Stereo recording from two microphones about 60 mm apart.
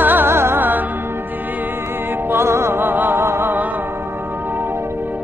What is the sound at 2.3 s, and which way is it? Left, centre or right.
Music, right.